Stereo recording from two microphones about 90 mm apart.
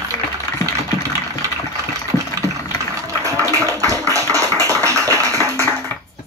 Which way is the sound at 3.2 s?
35° right (ahead or behind).